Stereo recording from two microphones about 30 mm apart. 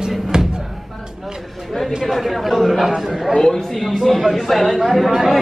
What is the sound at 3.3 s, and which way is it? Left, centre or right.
Speech, centre.